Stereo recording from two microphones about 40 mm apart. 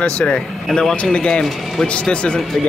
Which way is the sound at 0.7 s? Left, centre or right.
Centre.